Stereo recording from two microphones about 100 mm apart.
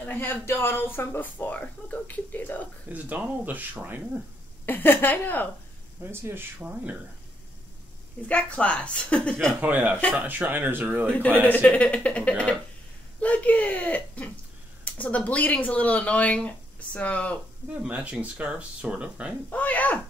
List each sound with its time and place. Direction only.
0.0 s speech: 20° left (ahead or behind)
2.9 s speech: 15° right (ahead or behind)
4.6 s speech: 20° left (ahead or behind)
6.0 s speech: 25° right (ahead or behind)
8.3 s speech: 10° left (ahead or behind)
9.6 s speech: 15° right (ahead or behind)
11.4 s speech: 15° left (ahead or behind)
17.8 s speech: 15° right (ahead or behind)
19.5 s speech: 15° left (ahead or behind)